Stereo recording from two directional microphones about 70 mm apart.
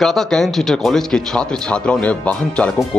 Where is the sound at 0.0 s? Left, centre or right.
Centre.